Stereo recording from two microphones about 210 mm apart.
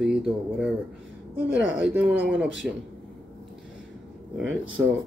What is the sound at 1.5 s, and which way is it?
Speech, 60° right (ahead or behind).